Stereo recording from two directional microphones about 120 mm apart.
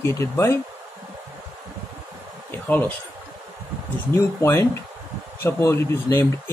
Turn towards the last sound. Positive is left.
turn(degrees=25)  # may be behind; listen again after turning